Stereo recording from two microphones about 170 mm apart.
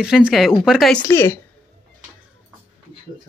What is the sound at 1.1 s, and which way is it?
Speech, 15° left (ahead or behind).